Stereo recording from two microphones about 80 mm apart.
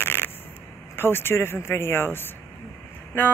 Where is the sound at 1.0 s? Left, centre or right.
Left.